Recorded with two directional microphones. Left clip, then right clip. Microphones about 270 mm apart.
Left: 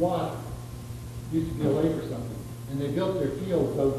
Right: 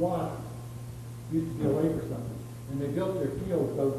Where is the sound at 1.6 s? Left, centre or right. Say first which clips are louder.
Left 2 dB; right.